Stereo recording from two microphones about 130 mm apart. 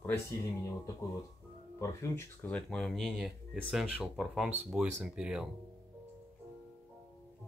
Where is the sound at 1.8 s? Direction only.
20° left (ahead or behind).